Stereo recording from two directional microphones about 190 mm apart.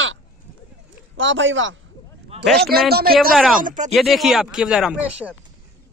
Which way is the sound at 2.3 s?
30° right (ahead or behind).